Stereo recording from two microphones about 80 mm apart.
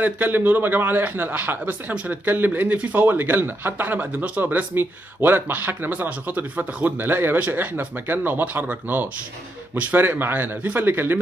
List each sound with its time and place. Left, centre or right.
0.0 s a man's voice: right